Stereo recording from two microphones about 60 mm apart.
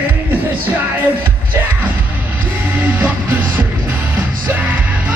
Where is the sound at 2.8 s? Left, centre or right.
Right.